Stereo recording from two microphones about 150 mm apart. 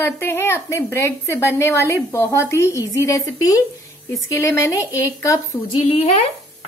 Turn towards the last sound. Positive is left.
turn(degrees=45)  # may be behind; listen again after turning